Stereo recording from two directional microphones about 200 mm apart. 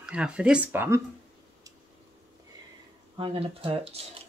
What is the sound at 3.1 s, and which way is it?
Speech, 25° right (ahead or behind).